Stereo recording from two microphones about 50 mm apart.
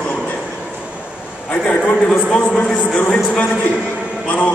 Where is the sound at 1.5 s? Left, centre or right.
Left.